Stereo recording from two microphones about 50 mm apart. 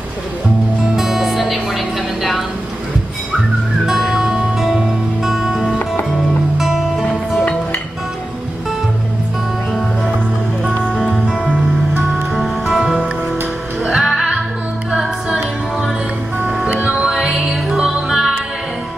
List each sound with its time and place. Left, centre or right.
0.9 s music: centre
3.8 s music: centre
12.4 s music: centre
13.9 s music: centre
14.9 s a capella: centre
16.8 s music: centre
17.1 s music: centre